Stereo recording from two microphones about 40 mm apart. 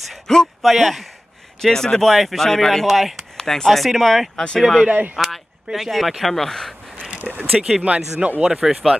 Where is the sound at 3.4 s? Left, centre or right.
Centre.